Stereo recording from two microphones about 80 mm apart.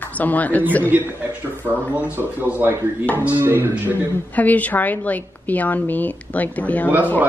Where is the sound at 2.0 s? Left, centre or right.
Right.